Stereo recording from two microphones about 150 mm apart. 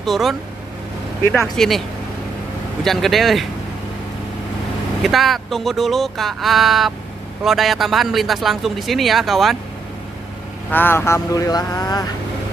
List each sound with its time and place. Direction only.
0.0 s speech: centre (ahead or behind)
1.4 s speech: centre (ahead or behind)
2.8 s speech: centre (ahead or behind)
5.0 s speech: centre (ahead or behind)
10.7 s speech: 15° left (ahead or behind)